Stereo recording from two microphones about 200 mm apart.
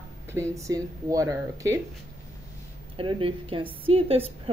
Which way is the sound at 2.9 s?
25° right (ahead or behind).